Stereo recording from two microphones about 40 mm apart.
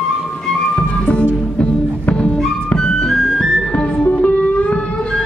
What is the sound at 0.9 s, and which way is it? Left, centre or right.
Music, left.